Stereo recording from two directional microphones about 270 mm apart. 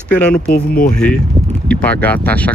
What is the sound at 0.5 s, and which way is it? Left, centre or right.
Speech, left.